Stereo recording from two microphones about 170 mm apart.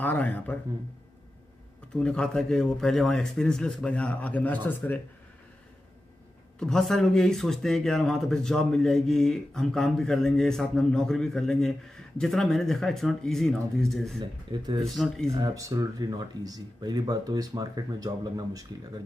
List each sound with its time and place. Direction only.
0.0 s a man's voice: 10° left (ahead or behind)
2.0 s speech: 5° left (ahead or behind)
6.6 s speech: centre (ahead or behind)
15.3 s speech: 20° right (ahead or behind)